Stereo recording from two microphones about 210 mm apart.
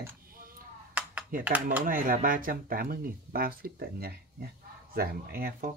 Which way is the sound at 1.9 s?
40° right (ahead or behind).